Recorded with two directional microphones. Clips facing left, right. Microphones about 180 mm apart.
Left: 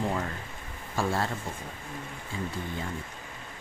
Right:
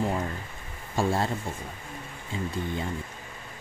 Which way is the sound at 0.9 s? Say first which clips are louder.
Right 3 dB; 25° right (ahead or behind).